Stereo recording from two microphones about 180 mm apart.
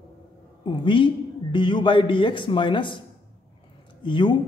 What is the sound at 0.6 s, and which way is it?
A man's voice, 25° left (ahead or behind).